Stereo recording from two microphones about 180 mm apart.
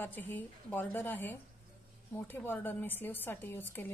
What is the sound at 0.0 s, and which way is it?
A woman's voice, 10° left (ahead or behind).